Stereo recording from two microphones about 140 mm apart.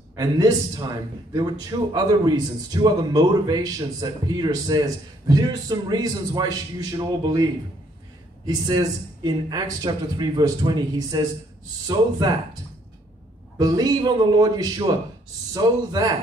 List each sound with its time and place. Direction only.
0.1 s a man's voice: 25° right (ahead or behind)
8.5 s a man's voice: 30° right (ahead or behind)
13.6 s a man's voice: 30° right (ahead or behind)